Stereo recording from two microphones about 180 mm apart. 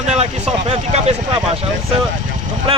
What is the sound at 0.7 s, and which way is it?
Speech, 35° right (ahead or behind).